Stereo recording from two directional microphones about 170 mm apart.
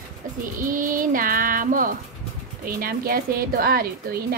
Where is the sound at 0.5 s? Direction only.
50° right (ahead or behind).